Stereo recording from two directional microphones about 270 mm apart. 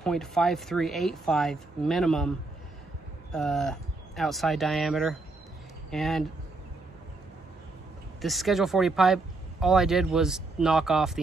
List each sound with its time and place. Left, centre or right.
0.0 s speech: centre
3.3 s speech: centre
8.2 s speech: centre